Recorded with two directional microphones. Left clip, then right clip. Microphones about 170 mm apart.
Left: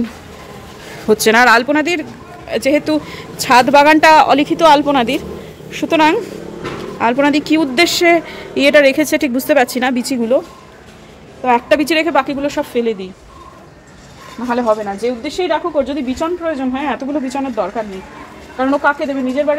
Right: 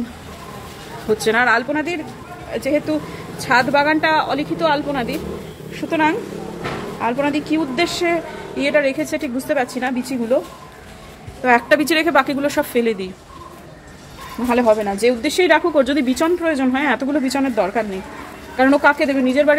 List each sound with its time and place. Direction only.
1.0 s speech: 70° left (ahead or behind); by 2.0 s 90° left
2.5 s speech: 65° left (ahead or behind)
5.7 s a woman's voice: 80° left
11.4 s a woman's voice: 25° left (ahead or behind)
14.5 s a woman's voice: 10° right (ahead or behind)
16.8 s speech: centre (ahead or behind)
18.6 s a woman's voice: 20° right (ahead or behind)